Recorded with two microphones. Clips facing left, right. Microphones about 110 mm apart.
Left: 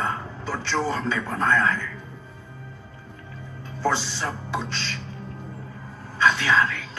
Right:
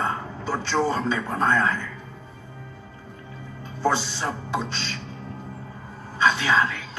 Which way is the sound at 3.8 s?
15° right (ahead or behind).